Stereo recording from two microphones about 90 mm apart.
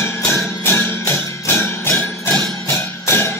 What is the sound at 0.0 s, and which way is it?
Music, 25° left (ahead or behind).